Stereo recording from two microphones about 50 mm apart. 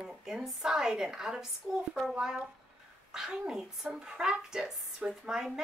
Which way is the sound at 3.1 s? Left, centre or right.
Centre.